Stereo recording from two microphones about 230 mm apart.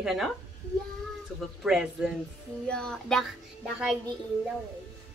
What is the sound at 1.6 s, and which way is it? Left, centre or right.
Speech, centre.